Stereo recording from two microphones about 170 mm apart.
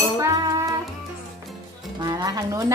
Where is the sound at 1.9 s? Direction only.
25° right (ahead or behind).